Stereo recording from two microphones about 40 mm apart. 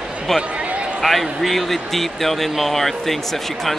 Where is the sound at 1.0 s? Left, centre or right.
Centre.